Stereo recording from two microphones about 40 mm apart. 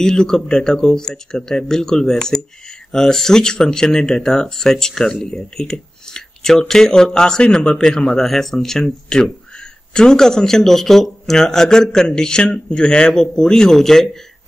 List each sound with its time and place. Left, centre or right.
0.0 s speech: centre
5.2 s a sound: centre
6.7 s speech: centre